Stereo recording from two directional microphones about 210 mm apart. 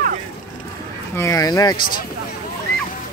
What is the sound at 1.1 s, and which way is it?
Speech, 15° left (ahead or behind).